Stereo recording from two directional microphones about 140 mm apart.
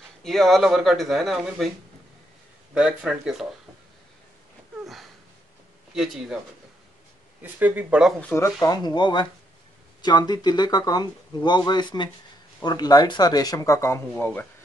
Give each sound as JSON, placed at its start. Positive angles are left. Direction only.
{"t": 0.2, "sound": "speech", "side_deg": 0}
{"t": 2.7, "sound": "speech", "side_deg": -5}
{"t": 4.8, "sound": "a sound", "side_deg": 0}
{"t": 5.9, "sound": "speech", "side_deg": -5}
{"t": 7.4, "sound": "speech", "side_deg": -10}
{"t": 8.2, "sound": "speech", "side_deg": 10}
{"t": 8.5, "sound": "speech", "side_deg": 30}